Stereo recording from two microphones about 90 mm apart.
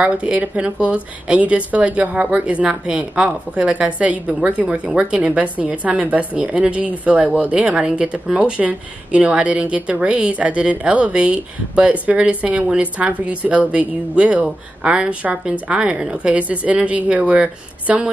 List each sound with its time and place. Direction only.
0.0 s a woman's voice: 15° right (ahead or behind)